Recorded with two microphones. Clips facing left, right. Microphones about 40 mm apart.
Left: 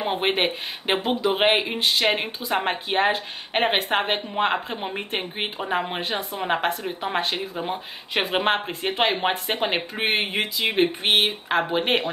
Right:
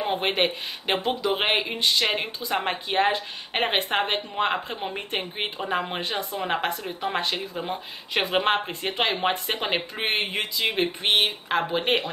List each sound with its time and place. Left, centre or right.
0.0 s speech: centre
5.9 s speech: left
6.4 s speech: centre